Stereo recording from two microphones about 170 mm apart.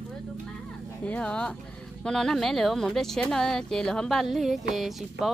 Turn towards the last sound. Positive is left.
turn(degrees=0)  # may be behind; listen again after turning